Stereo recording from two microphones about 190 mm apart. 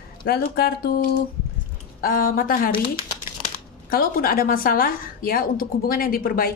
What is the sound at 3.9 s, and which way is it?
A woman's voice, 50° left (ahead or behind).